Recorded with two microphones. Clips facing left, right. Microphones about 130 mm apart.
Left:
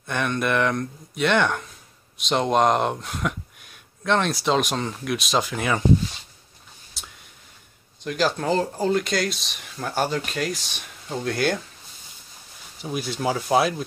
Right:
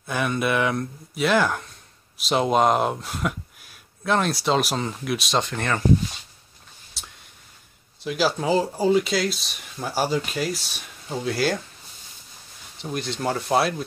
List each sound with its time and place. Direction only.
0.0 s speech: 5° right (ahead or behind)
7.0 s whispering: centre (ahead or behind)
8.0 s speech: 5° right (ahead or behind)
12.7 s speech: 5° left (ahead or behind)